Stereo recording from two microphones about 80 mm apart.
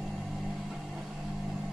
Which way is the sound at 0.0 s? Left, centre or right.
Centre.